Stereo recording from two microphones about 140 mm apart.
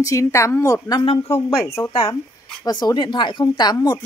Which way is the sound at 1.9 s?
30° left (ahead or behind).